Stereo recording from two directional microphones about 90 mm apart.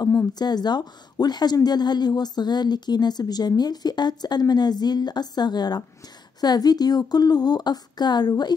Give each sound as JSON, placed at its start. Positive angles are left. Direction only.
{"t": 0.3, "sound": "a woman's voice", "side_deg": 50}